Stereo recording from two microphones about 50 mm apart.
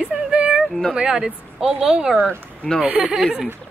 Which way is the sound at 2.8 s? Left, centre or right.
Right.